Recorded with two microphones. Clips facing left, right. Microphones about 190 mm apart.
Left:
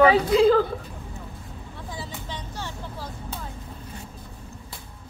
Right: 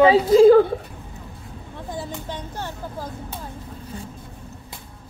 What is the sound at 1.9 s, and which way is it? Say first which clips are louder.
Vehicle: right 6 dB; 50° right (ahead or behind).